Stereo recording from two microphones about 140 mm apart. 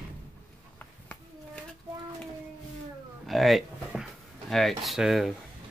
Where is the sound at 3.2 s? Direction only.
Centre (ahead or behind).